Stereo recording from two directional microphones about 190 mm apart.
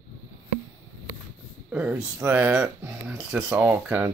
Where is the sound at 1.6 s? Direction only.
5° right (ahead or behind).